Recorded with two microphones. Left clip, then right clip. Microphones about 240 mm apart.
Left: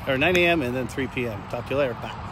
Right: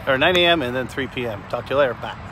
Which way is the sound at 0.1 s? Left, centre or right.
Centre.